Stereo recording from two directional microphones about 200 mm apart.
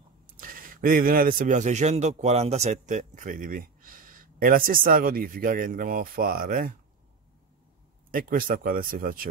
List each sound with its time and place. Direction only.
0.4 s a man's voice: 45° right (ahead or behind)
8.1 s speech: 45° right (ahead or behind)